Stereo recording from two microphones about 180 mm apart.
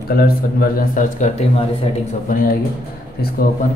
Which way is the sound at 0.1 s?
55° left (ahead or behind).